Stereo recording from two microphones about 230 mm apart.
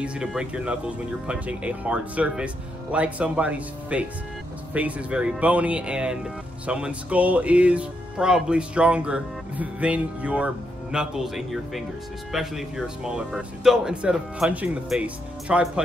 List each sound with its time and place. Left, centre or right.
0.0 s speech: centre